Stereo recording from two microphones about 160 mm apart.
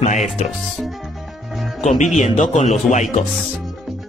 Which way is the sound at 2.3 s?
45° left (ahead or behind).